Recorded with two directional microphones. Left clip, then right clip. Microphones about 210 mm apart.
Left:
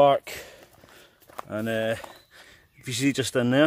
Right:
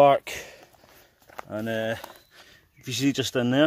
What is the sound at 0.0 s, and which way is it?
Speech, 20° right (ahead or behind).